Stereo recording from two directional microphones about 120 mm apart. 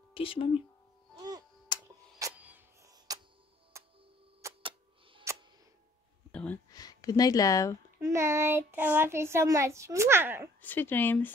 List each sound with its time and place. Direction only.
0.1 s speech: 50° left (ahead or behind)
1.1 s music: 35° right (ahead or behind)
1.7 s tick-tock: 40° left (ahead or behind)
2.3 s music: 15° right (ahead or behind)
2.8 s tick-tock: 30° right (ahead or behind)
3.8 s music: 25° right (ahead or behind)
4.4 s tick-tock: 25° right (ahead or behind)
5.3 s tick: 25° right (ahead or behind)
6.3 s a sound: 10° left (ahead or behind)
6.7 s speech: 30° left (ahead or behind)
8.0 s a child's voice: 25° right (ahead or behind)
10.6 s a woman's voice: 15° left (ahead or behind)